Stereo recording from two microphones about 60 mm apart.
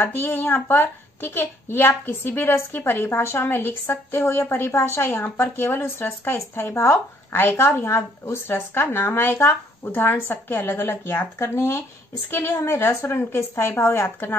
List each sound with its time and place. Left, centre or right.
0.0 s a woman's voice: left